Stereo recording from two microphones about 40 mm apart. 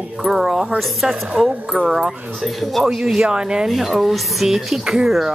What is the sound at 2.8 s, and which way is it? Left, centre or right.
Speech, centre.